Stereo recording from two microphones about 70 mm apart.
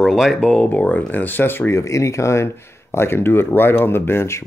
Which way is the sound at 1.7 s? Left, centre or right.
Left.